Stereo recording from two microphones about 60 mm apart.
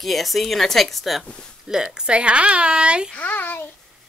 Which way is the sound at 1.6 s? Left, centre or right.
Centre.